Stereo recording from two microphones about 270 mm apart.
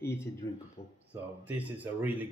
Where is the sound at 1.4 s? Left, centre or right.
Centre.